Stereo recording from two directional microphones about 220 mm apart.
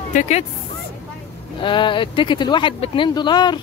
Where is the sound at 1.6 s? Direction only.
20° left (ahead or behind).